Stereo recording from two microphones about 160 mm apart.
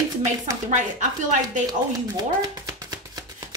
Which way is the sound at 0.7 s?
50° right (ahead or behind).